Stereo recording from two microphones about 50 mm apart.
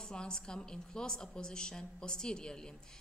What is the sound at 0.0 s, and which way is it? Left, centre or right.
A woman's voice, centre.